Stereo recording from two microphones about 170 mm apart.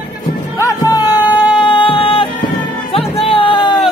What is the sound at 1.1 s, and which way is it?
Cat, 10° right (ahead or behind).